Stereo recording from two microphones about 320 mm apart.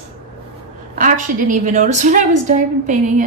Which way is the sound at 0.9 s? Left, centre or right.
Right.